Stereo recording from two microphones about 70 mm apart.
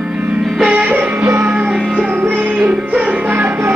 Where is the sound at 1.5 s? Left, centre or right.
Centre; by 2.6 s right.